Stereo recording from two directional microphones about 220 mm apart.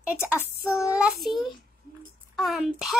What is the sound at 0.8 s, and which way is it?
Speech, 5° right (ahead or behind).